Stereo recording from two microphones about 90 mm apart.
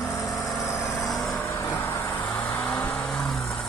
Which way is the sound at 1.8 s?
30° left (ahead or behind).